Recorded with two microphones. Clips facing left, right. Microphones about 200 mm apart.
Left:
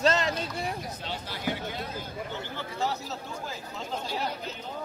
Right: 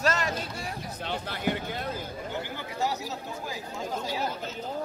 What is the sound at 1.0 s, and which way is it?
Speech, 55° right (ahead or behind).